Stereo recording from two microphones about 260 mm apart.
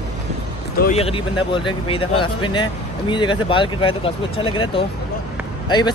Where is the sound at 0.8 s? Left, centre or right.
Left.